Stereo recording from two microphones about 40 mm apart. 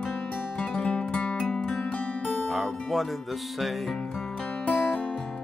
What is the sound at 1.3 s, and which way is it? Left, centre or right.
Music, centre.